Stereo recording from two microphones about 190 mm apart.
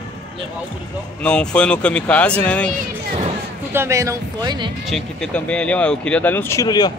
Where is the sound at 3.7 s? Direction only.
15° right (ahead or behind).